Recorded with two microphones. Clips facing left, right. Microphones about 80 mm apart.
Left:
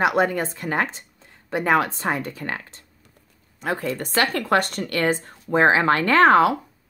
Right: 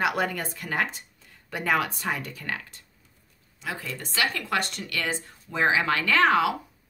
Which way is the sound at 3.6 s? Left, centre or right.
Left.